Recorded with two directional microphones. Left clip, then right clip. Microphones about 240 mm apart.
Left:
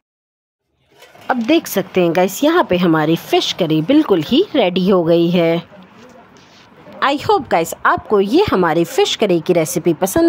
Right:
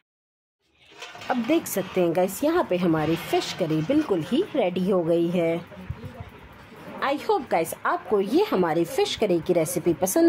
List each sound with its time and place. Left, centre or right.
1.2 s a woman's voice: left
7.0 s a woman's voice: left